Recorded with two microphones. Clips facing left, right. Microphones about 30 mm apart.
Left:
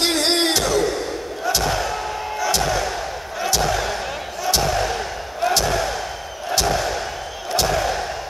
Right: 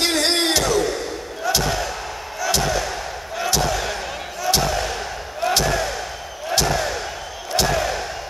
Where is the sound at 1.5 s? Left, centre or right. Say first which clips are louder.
Left 1 dB; centre.